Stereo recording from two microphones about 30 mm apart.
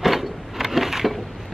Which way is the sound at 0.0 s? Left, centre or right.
Centre.